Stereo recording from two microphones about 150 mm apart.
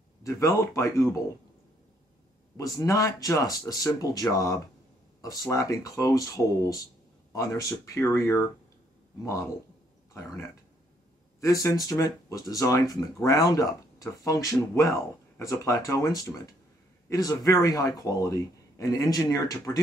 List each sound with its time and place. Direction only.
0.2 s speech: 20° left (ahead or behind)
2.5 s speech: 20° left (ahead or behind)